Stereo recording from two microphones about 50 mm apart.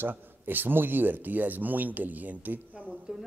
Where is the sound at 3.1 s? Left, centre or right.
Centre.